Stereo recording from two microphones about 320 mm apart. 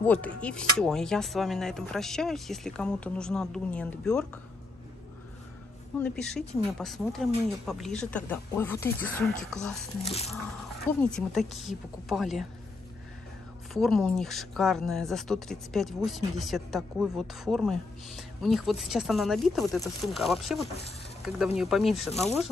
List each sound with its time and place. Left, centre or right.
0.0 s a woman's voice: centre
5.9 s a woman's voice: centre
10.0 s speech: centre
10.8 s a woman's voice: centre
13.7 s a woman's voice: centre